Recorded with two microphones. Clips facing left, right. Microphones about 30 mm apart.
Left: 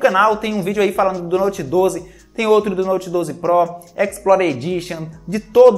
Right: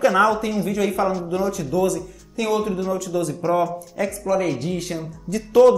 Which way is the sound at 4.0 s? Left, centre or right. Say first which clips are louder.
Left 8 dB; left.